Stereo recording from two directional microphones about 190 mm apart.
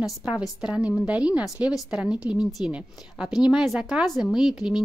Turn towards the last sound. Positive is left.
turn(degrees=-5)  # may be behind; listen again after turning